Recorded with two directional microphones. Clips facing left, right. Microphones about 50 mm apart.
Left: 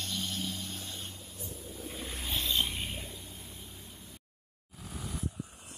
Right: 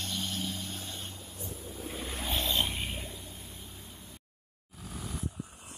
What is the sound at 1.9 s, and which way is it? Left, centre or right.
Ocean, right.